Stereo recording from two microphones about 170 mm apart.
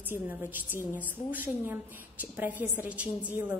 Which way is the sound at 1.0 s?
10° right (ahead or behind).